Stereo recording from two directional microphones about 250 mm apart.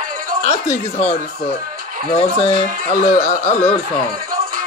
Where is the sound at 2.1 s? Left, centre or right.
Left.